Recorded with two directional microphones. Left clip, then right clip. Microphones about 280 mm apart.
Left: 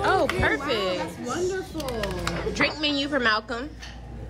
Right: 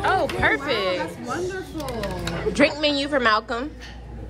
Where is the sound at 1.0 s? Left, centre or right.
Centre.